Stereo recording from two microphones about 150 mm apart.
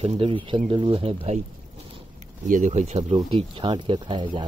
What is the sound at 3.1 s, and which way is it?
Speech, 35° right (ahead or behind).